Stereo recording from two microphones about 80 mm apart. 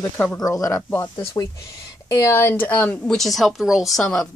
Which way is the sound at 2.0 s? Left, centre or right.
Left.